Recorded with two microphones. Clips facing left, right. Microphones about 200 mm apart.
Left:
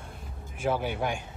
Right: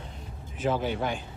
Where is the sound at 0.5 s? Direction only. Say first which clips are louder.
Right 1 dB; 10° left (ahead or behind).